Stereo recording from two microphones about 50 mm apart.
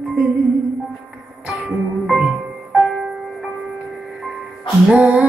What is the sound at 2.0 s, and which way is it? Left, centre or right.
Music, centre.